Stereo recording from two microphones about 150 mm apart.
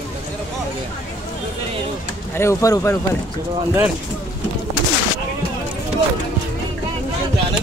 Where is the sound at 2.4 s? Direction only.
20° left (ahead or behind).